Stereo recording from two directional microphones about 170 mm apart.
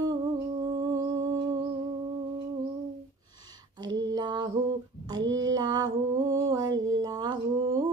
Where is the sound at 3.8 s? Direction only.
25° right (ahead or behind).